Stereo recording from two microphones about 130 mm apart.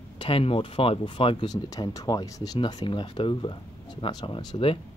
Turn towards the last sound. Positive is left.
turn(degrees=40)  # may be behind; listen again after turning